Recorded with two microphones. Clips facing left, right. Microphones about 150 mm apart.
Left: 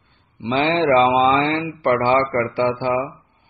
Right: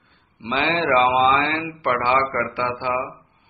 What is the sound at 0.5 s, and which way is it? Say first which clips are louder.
Speech: left 4 dB; 35° left (ahead or behind).